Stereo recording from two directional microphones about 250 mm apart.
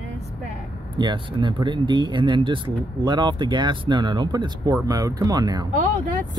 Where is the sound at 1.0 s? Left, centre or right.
Centre.